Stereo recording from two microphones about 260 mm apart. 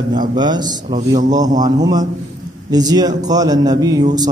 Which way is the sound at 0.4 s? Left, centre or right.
Centre.